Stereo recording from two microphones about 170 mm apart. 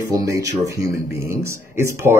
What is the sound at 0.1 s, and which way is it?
Speech, 20° right (ahead or behind).